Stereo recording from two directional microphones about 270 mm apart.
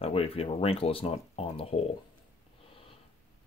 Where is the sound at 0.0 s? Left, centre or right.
Left.